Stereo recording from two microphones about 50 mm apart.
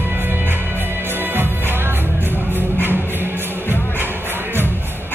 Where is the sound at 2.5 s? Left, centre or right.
Right.